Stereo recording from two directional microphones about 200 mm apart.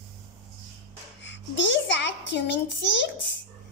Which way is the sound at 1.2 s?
65° left (ahead or behind).